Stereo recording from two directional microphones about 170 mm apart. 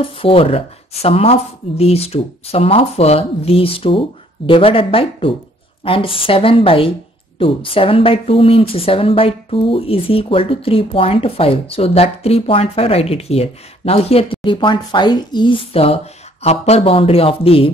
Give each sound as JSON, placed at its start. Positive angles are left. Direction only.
{"t": 0.0, "sound": "speech", "side_deg": 30}